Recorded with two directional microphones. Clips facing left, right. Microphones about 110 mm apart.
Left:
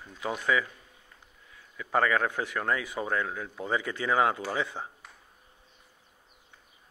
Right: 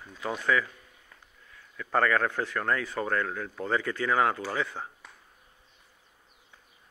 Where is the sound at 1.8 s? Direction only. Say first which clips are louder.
Right 1 dB; 15° left (ahead or behind).